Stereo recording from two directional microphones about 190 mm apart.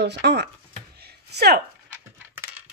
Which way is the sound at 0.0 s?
60° right (ahead or behind).